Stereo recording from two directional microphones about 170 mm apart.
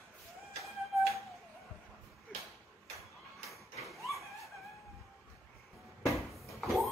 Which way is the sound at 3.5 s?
Centre (ahead or behind).